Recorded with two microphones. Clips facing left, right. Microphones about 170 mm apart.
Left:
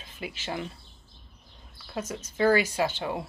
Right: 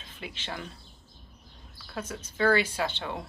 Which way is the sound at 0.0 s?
10° left (ahead or behind).